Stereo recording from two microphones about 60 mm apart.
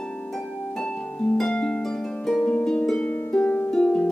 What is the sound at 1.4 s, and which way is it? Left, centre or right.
Harp, centre.